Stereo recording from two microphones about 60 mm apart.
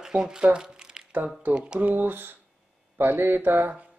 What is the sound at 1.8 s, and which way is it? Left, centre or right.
Speech, right.